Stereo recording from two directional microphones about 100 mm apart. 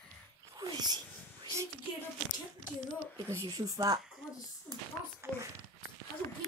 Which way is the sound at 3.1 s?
40° right (ahead or behind).